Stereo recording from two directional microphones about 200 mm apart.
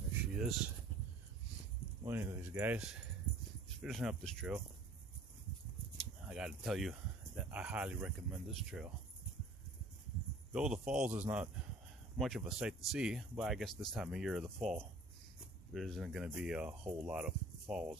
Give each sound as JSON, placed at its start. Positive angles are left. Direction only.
{"t": 0.3, "sound": "speech", "side_deg": -5}
{"t": 2.0, "sound": "speech", "side_deg": -10}
{"t": 5.9, "sound": "speech", "side_deg": -5}
{"t": 10.5, "sound": "speech", "side_deg": -5}